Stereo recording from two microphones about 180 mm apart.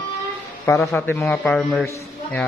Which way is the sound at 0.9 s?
10° left (ahead or behind).